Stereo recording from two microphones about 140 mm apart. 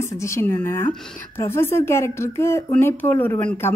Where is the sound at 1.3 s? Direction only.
15° left (ahead or behind).